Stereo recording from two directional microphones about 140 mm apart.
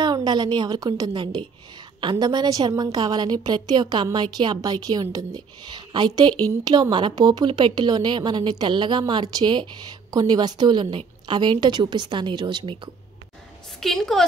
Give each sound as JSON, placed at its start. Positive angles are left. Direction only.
{"t": 0.0, "sound": "a woman's voice", "side_deg": -35}
{"t": 13.7, "sound": "a woman's voice", "side_deg": 0}